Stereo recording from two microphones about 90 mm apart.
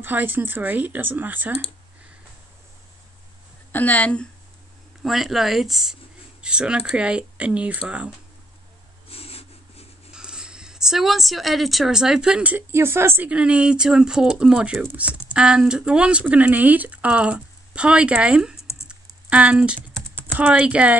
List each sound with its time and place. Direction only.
0.0 s speech: 20° right (ahead or behind)
3.7 s speech: 20° left (ahead or behind)
5.0 s speech: centre (ahead or behind)
9.1 s a sound: 90° left
10.1 s speech: 10° right (ahead or behind)
12.7 s speech: 25° right (ahead or behind)
13.3 s speech: 10° right (ahead or behind)
18.9 s a sound: 10° right (ahead or behind)
20.2 s speech: 20° right (ahead or behind)